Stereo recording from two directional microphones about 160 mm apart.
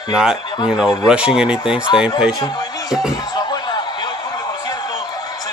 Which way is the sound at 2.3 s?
25° left (ahead or behind).